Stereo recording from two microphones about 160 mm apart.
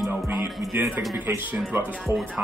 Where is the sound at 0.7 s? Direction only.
15° right (ahead or behind).